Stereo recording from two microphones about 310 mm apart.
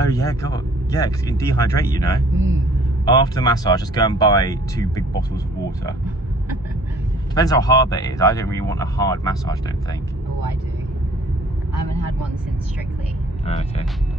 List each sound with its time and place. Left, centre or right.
0.1 s speech: centre
7.3 s speech: centre
13.5 s speech: centre